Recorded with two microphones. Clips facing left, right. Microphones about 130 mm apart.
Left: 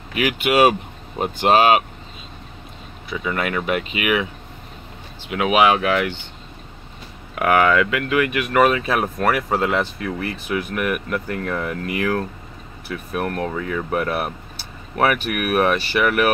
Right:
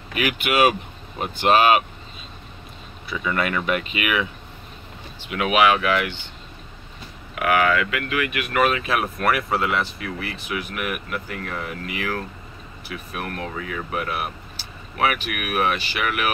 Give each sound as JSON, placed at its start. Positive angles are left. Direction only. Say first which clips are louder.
{"t": 0.1, "sound": "speech", "louder": "left 4 dB", "side_deg": 25}
{"t": 3.1, "sound": "speech", "louder": "left 1 dB", "side_deg": 15}
{"t": 5.3, "sound": "speech", "louder": "left 2 dB", "side_deg": 25}
{"t": 7.3, "sound": "speech", "louder": "left 3 dB", "side_deg": 35}